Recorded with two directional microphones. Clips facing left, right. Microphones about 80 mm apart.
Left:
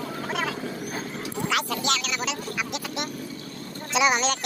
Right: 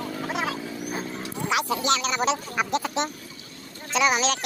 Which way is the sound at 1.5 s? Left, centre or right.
Centre.